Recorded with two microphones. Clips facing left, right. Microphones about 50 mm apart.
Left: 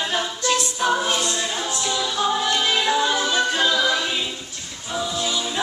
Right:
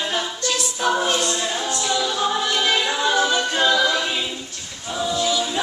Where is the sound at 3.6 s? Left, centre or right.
Centre.